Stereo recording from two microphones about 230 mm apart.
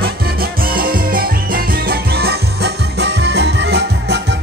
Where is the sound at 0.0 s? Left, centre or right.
Right.